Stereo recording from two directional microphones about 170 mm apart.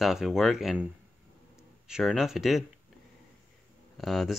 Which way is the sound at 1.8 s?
5° right (ahead or behind).